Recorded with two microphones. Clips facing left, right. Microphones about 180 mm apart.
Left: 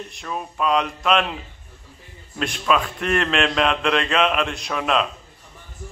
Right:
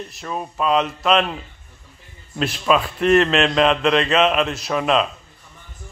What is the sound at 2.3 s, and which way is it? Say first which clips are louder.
A man's voice: right 3 dB; centre (ahead or behind).